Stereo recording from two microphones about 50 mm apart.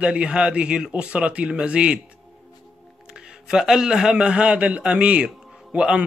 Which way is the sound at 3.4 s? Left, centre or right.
Centre.